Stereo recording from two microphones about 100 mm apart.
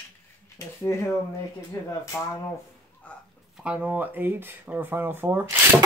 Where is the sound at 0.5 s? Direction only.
30° left (ahead or behind).